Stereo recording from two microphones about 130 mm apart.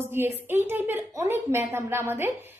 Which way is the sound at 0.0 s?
20° right (ahead or behind).